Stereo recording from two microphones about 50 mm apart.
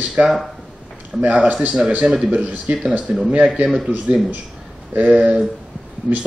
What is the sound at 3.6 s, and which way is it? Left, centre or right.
Speech, right.